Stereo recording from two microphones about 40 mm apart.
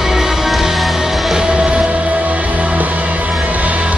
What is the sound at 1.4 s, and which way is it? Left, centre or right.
Music, right.